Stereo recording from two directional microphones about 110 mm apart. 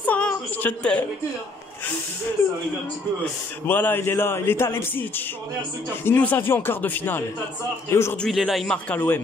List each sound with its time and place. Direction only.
0.0 s a sound: 15° left (ahead or behind)
3.6 s a man's voice: 20° left (ahead or behind)
8.2 s speech: centre (ahead or behind)
8.6 s a man's voice: 15° left (ahead or behind)